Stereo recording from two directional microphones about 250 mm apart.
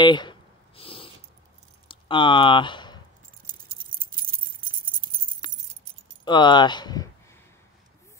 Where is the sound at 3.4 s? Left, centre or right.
Right.